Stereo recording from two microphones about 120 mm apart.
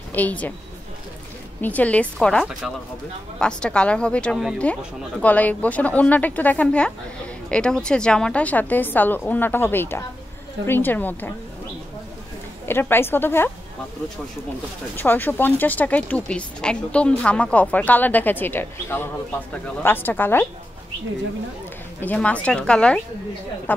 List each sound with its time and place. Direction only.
0.1 s a woman's voice: 15° left (ahead or behind)
1.6 s a woman's voice: 15° left (ahead or behind)
12.6 s a woman's voice: 20° left (ahead or behind)
15.0 s a woman's voice: 15° left (ahead or behind)
22.0 s a woman's voice: 10° left (ahead or behind)